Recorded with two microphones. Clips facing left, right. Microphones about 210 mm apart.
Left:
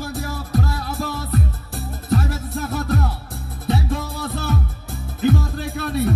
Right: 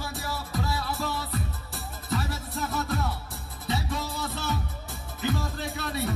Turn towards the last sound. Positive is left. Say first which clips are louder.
# left 8 dB
turn(degrees=55)  # may be behind; listen again after turning